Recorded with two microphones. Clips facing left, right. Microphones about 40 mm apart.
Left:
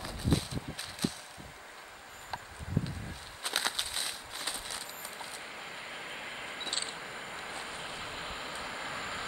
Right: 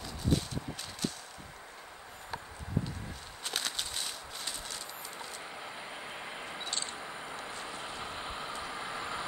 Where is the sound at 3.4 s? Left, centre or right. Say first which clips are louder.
Left 3 dB; centre.